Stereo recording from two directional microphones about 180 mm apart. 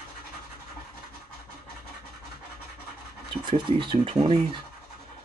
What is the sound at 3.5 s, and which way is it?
Speech, 25° right (ahead or behind).